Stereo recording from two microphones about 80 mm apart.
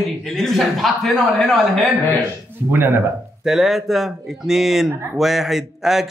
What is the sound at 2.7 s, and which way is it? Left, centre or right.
Speech, right.